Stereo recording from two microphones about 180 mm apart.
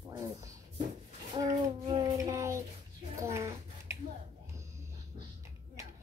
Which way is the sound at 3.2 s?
15° right (ahead or behind).